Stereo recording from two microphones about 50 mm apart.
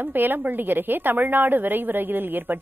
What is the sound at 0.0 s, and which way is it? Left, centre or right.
A woman's voice, right.